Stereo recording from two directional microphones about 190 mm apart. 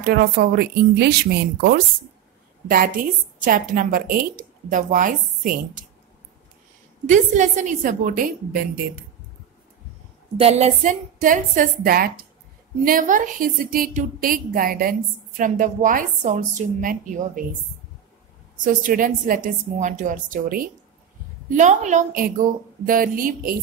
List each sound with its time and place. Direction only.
0.0 s a woman's voice: 55° right (ahead or behind)
7.1 s a woman's voice: 40° right (ahead or behind)
10.3 s a woman's voice: 35° right (ahead or behind)
18.6 s a woman's voice: 45° right (ahead or behind)